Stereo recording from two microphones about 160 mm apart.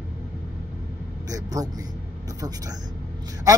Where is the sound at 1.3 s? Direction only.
20° right (ahead or behind).